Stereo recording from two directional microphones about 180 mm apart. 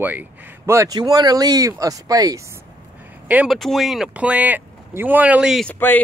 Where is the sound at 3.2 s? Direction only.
5° right (ahead or behind).